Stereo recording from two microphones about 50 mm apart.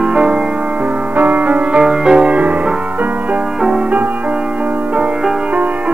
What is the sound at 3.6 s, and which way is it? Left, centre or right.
Music, centre.